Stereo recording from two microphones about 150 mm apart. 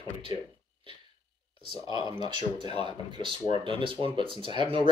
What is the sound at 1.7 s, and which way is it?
Speech, 30° right (ahead or behind).